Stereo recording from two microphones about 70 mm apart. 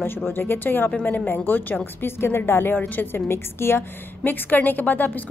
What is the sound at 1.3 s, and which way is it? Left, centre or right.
A woman's voice, left.